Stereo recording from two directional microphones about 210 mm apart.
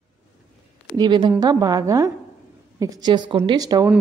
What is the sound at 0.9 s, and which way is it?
A woman's voice, 20° right (ahead or behind).